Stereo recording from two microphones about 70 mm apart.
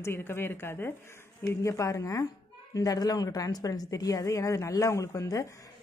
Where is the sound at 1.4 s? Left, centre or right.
Left.